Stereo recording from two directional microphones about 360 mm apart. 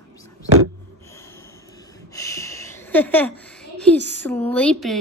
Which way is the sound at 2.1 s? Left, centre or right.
Centre.